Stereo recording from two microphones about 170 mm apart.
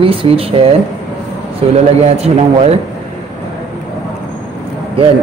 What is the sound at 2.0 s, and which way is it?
Speech, 40° right (ahead or behind).